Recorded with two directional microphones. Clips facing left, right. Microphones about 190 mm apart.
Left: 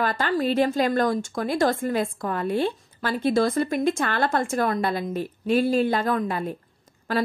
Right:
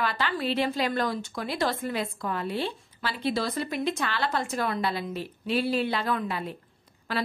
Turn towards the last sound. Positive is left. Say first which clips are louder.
# left 6 dB
turn(degrees=45)  # may be behind; listen again after turning